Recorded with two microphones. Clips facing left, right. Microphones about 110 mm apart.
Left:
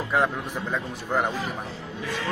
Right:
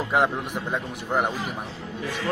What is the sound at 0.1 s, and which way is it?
Speech, 25° right (ahead or behind).